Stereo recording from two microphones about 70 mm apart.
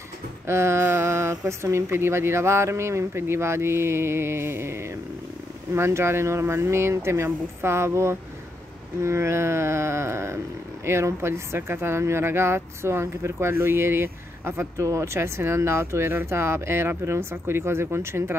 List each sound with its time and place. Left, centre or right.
0.5 s speech: right